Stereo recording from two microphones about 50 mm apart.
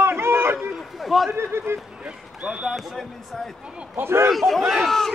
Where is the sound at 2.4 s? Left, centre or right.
Centre.